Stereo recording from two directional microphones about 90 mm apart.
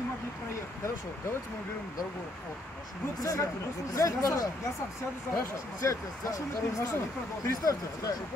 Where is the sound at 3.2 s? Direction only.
40° left (ahead or behind).